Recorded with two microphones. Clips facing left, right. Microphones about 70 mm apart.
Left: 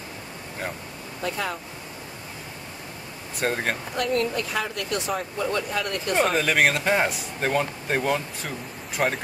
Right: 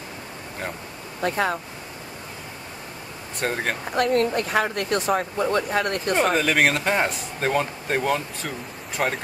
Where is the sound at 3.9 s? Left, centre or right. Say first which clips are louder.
Right 5 dB; right.